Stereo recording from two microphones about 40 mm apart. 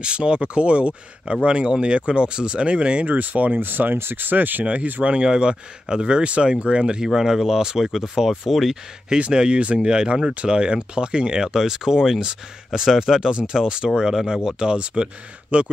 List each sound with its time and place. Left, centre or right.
0.0 s speech: right
3.1 s speech: right
3.6 s speech: right
4.6 s speech: right
5.0 s speech: right
7.1 s speech: centre
9.3 s speech: right